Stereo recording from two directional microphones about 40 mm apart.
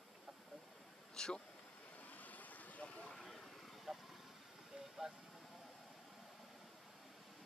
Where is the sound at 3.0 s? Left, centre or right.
Centre.